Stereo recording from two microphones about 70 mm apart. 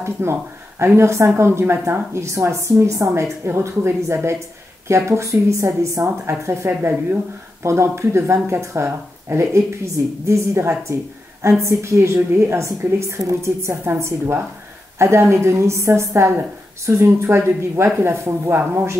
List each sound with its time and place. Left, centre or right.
0.0 s a woman's voice: right
6.7 s a woman's voice: right
7.6 s a woman's voice: right